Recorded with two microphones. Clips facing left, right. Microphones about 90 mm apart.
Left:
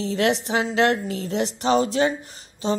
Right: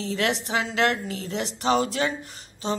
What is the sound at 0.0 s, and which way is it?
A woman's voice, 35° left (ahead or behind).